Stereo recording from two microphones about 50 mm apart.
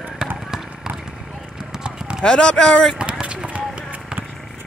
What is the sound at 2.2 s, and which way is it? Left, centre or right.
Speech, centre.